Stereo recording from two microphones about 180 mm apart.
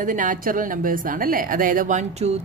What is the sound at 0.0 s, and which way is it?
A woman's voice, 45° right (ahead or behind).